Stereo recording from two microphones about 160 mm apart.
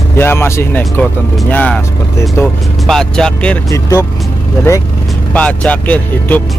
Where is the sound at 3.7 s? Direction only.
20° left (ahead or behind).